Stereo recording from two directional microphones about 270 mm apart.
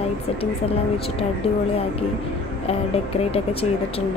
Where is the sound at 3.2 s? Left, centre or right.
Left.